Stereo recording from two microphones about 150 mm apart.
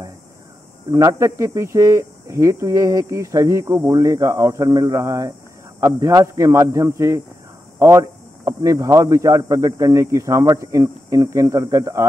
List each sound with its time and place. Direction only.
0.9 s speech: 20° right (ahead or behind)